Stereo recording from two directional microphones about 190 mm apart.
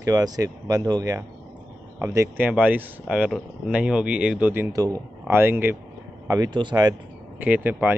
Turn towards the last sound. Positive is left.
turn(degrees=-10)  # may be behind; listen again after turning